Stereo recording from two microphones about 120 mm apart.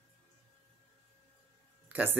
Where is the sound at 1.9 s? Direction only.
15° right (ahead or behind).